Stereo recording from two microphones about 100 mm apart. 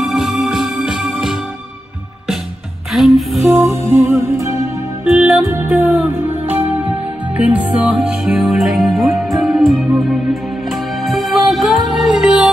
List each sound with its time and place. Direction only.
0.0 s music: 5° right (ahead or behind)
2.9 s music: centre (ahead or behind)
3.5 s music: 30° right (ahead or behind)
5.0 s music: 5° right (ahead or behind)
5.9 s music: 15° right (ahead or behind); by 10.0 s centre (ahead or behind)
11.1 s music: centre (ahead or behind)